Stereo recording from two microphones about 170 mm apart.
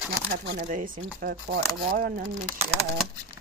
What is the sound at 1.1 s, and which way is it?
Speech, 55° right (ahead or behind).